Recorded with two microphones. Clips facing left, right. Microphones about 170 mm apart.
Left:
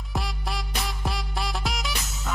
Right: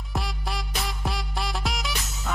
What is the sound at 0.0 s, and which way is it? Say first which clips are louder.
Music: even; centre (ahead or behind).